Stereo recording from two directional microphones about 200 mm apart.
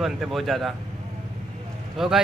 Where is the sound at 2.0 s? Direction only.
Centre (ahead or behind).